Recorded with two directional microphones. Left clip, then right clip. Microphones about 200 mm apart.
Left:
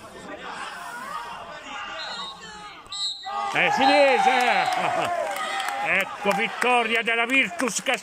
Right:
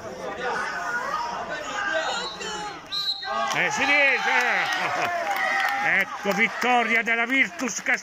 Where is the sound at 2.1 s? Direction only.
55° right (ahead or behind).